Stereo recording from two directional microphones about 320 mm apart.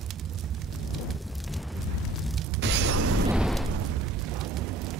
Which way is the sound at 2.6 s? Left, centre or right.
Right.